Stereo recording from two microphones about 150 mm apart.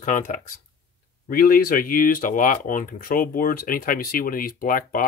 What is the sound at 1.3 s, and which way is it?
Speech, 75° left (ahead or behind).